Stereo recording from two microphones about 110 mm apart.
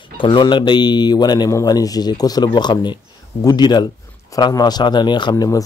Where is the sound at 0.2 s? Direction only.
45° left (ahead or behind).